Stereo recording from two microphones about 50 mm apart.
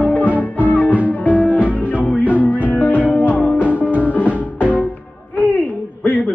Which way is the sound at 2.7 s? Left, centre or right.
Left.